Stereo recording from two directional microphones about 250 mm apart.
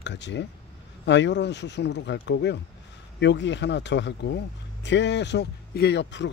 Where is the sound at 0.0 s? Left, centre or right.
Left.